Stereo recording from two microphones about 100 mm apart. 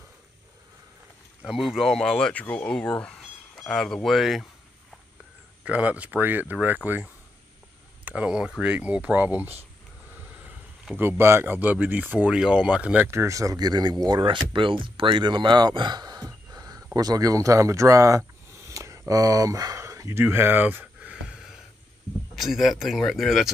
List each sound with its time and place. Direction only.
1.4 s speech: centre (ahead or behind)
5.7 s speech: 15° right (ahead or behind)
11.0 s speech: 25° right (ahead or behind); by 14.2 s 45° right (ahead or behind)
14.2 s speech: 55° right (ahead or behind); by 18.2 s 35° right (ahead or behind)
18.7 s a sound: 30° right (ahead or behind); by 21.5 s 10° right (ahead or behind)
22.3 s speech: centre (ahead or behind)